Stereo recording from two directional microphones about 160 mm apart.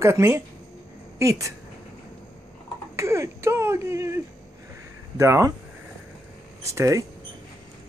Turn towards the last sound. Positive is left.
turn(degrees=-20)  # may be behind; listen again after turning